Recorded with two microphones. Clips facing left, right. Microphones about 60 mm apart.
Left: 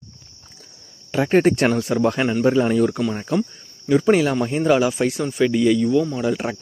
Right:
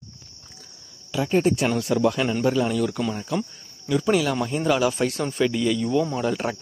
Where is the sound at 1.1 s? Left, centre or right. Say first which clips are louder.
Left 5 dB; left.